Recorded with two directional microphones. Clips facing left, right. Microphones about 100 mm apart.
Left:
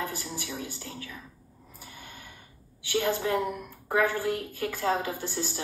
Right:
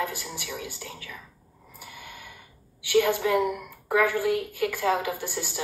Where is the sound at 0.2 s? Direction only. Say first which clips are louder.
Even; 30° left (ahead or behind).